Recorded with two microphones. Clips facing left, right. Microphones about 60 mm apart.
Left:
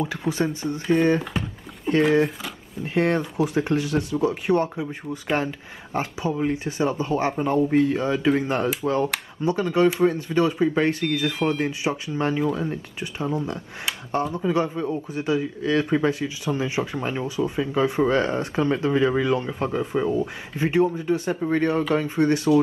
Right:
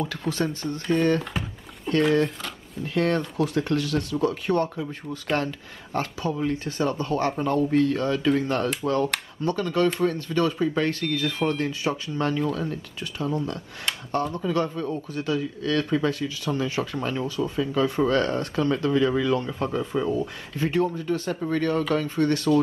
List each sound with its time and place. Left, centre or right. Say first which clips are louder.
0.0 s speech: left 2 dB; centre
1.2 s speech: left 3 dB; centre
1.9 s speech: left 2 dB; centre